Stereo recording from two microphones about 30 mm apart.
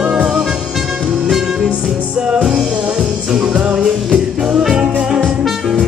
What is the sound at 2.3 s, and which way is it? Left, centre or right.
Music, right.